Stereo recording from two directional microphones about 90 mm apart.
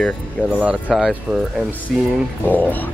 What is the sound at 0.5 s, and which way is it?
Speech, 15° right (ahead or behind).